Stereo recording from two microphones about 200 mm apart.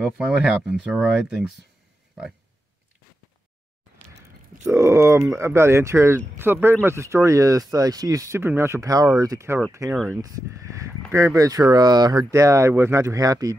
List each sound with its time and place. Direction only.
0.0 s speech: 5° right (ahead or behind)
4.6 s speech: 15° right (ahead or behind)
11.1 s speech: 15° right (ahead or behind)